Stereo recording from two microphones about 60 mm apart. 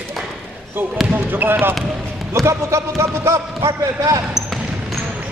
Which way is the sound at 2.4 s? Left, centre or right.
Right.